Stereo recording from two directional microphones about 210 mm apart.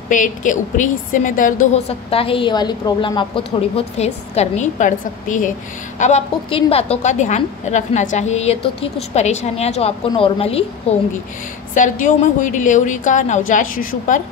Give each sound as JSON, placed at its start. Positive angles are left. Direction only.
{"t": 0.1, "sound": "a woman's voice", "side_deg": 40}
{"t": 1.7, "sound": "a woman's voice", "side_deg": 30}